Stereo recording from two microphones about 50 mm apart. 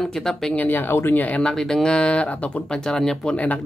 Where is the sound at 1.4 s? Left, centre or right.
Centre; by 2.6 s left.